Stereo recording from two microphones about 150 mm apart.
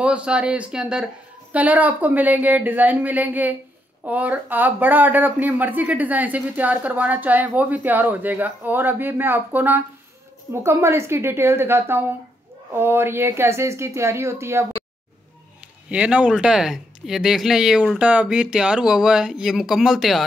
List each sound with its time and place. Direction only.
0.0 s speech: 10° right (ahead or behind)
15.9 s speech: 10° right (ahead or behind)